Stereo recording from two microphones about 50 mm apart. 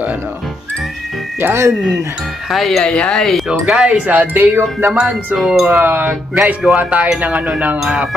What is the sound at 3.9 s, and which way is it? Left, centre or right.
Music, right.